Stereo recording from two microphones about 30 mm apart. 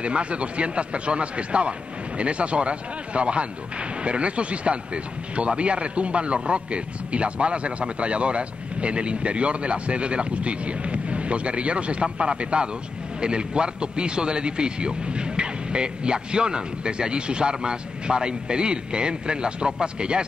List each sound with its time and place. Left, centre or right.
0.0 s a man's voice: right